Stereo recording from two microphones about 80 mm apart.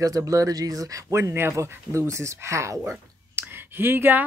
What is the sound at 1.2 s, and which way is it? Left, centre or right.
Speech, right.